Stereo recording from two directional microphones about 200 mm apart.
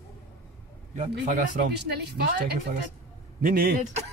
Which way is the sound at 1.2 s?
40° right (ahead or behind).